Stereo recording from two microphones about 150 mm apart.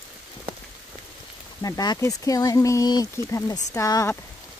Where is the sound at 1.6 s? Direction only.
25° left (ahead or behind).